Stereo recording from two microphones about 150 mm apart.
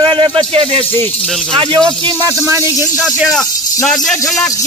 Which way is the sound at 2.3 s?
20° right (ahead or behind).